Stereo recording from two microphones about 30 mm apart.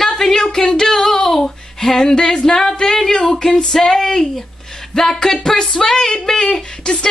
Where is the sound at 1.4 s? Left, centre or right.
Centre.